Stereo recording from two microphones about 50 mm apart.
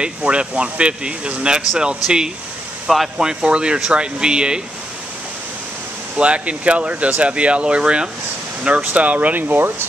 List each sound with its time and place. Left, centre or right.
0.0 s speech: right
6.1 s speech: right